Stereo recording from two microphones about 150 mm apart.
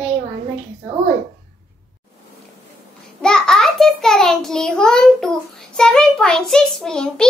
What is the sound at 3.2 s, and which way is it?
A child's voice, 5° left (ahead or behind).